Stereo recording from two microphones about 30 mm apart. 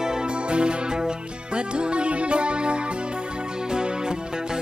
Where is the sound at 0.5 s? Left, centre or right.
Right.